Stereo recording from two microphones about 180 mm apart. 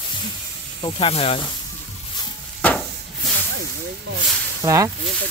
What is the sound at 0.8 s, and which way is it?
Speech, 30° left (ahead or behind).